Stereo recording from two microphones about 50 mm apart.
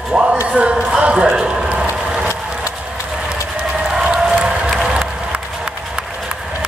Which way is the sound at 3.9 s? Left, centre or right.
Centre.